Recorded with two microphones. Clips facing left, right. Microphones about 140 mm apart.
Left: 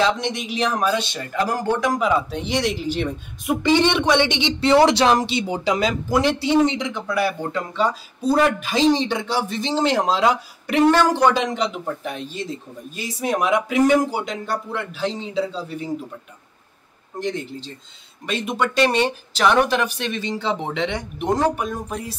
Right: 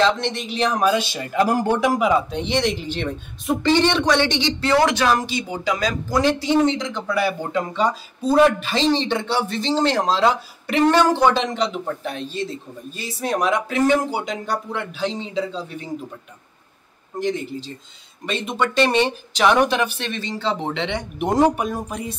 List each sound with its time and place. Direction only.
0.0 s a man's voice: 10° left (ahead or behind); by 2.1 s 10° right (ahead or behind)
2.2 s a woman's voice: 5° left (ahead or behind); by 5.9 s 25° left (ahead or behind)
6.0 s a woman's voice: 10° left (ahead or behind)
17.2 s speech: centre (ahead or behind)
20.3 s a woman's voice: 15° left (ahead or behind)